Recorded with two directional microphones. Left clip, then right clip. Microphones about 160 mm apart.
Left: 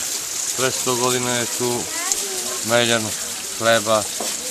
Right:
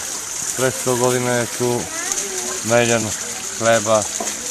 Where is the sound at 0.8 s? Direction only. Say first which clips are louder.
Right 2 dB; 20° right (ahead or behind).